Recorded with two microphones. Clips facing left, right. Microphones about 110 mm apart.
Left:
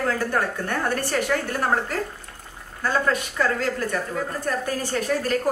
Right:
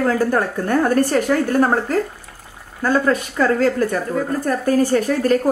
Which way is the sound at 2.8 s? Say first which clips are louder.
Right 6 dB; 45° right (ahead or behind).